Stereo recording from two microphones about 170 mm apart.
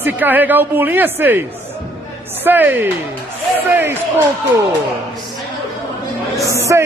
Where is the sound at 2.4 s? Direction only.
10° right (ahead or behind).